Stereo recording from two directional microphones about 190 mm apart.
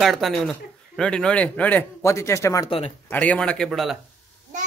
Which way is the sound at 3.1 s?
5° left (ahead or behind).